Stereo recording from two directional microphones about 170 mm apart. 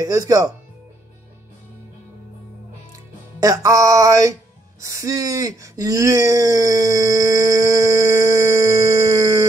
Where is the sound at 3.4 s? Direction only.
20° right (ahead or behind).